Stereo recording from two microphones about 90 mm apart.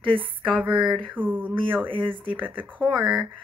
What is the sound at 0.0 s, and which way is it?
Speech, 75° right (ahead or behind).